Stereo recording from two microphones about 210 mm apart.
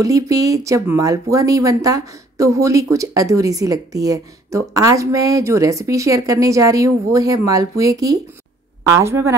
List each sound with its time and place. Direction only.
0.0 s speech: 15° right (ahead or behind)